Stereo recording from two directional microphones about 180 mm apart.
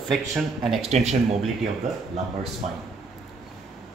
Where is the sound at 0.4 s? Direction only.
Centre (ahead or behind).